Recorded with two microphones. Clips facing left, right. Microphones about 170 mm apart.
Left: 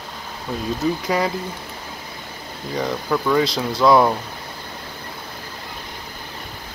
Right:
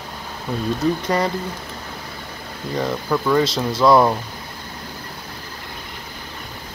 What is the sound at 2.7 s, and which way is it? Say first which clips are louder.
Speech: right 1 dB; centre (ahead or behind).